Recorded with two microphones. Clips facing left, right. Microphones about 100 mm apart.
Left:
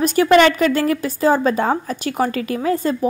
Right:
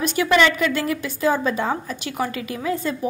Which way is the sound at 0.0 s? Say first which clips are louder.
Left 5 dB; 45° left (ahead or behind).